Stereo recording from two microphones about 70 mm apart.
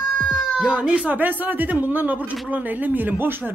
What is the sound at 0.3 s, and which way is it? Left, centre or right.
A woman's voice, centre.